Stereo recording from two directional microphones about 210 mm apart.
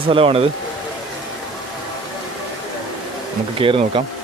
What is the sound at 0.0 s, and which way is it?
Bee, 25° right (ahead or behind).